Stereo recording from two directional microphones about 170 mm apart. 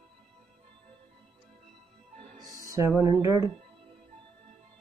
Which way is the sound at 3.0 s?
25° right (ahead or behind).